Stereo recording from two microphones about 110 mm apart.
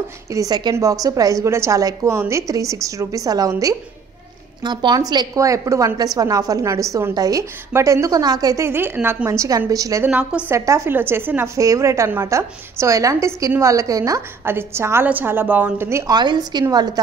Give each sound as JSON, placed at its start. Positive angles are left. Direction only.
{"t": 0.3, "sound": "a woman's voice", "side_deg": -35}
{"t": 10.0, "sound": "a woman's voice", "side_deg": -15}
{"t": 10.5, "sound": "a woman's voice", "side_deg": -25}
{"t": 16.1, "sound": "a woman's voice", "side_deg": -40}